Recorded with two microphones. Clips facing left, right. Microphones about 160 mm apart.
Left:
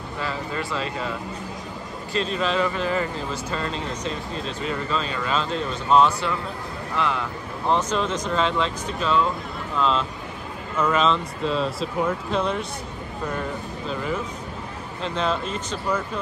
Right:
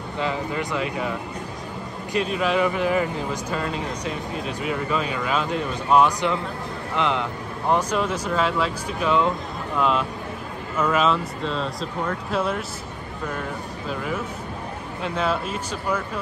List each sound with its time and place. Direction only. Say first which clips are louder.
0.2 s speech: right 3 dB; 15° right (ahead or behind)
2.1 s speech: right 2 dB; 10° right (ahead or behind)
15.0 s speech: even; 10° right (ahead or behind)